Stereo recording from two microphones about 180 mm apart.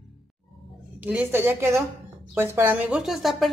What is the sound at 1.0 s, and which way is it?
A woman's voice, 10° right (ahead or behind).